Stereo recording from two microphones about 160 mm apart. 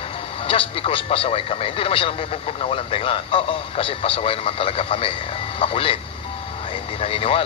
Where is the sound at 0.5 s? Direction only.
35° left (ahead or behind).